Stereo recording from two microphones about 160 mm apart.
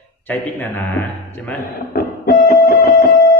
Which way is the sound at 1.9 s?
65° left (ahead or behind).